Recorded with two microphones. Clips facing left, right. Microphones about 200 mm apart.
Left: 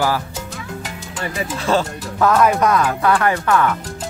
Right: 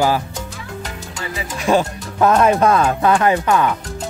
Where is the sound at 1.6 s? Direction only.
15° right (ahead or behind).